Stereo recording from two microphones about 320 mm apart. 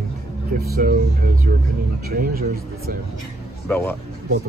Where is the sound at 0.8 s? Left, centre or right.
Right.